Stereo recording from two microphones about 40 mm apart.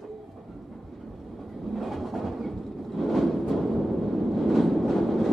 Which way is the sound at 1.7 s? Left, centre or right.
Centre.